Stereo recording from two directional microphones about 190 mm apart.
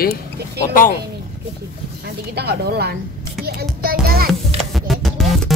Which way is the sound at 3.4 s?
55° right (ahead or behind).